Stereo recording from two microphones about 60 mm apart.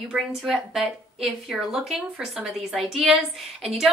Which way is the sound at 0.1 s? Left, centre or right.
Centre.